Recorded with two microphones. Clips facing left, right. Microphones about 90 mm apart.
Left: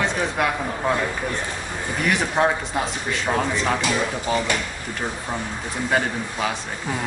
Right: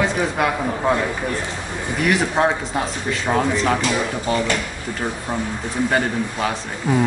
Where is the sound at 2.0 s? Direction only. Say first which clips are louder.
Right 2 dB; 5° right (ahead or behind).